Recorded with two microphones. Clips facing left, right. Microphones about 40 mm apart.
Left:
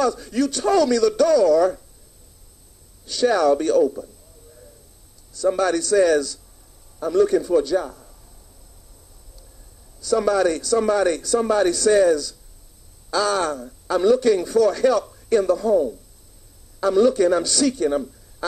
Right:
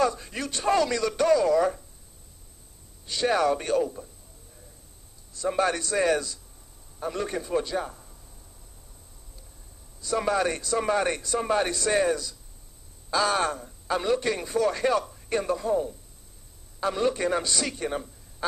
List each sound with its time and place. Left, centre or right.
0.0 s a man's voice: right
3.1 s a man's voice: right
5.3 s a man's voice: right
9.9 s a man's voice: right